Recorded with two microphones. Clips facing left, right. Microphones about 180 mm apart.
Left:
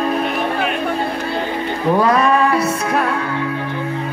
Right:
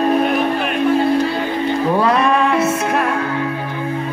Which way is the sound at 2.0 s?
35° left (ahead or behind).